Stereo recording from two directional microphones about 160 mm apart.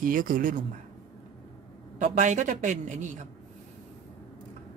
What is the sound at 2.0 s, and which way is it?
Speech, 60° right (ahead or behind).